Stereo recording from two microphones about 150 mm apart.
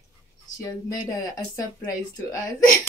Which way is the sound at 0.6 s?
20° left (ahead or behind).